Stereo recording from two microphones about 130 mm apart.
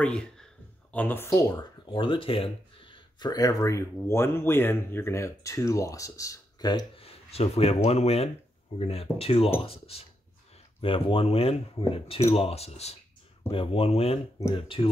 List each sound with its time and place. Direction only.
0.0 s speech: 5° left (ahead or behind); by 6.9 s 30° left (ahead or behind)
7.0 s speech: 50° left (ahead or behind)